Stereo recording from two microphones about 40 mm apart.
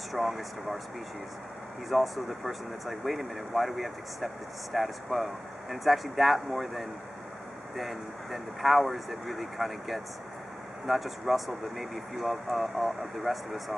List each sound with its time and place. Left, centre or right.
0.1 s speech: centre
1.9 s speech: centre